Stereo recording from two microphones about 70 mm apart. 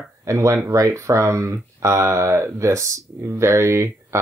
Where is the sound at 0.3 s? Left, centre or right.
Right.